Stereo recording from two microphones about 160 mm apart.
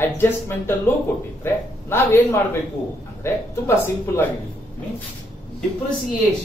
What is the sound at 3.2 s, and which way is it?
Speech, 15° left (ahead or behind).